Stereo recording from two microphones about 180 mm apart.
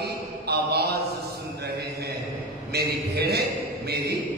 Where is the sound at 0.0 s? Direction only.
65° right (ahead or behind).